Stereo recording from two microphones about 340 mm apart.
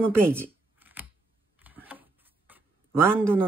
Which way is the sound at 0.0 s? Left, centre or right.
Centre.